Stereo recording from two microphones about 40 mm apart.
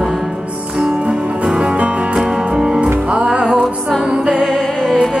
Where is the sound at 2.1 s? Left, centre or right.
Centre.